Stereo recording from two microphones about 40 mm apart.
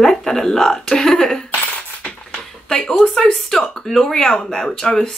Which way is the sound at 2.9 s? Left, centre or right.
Left.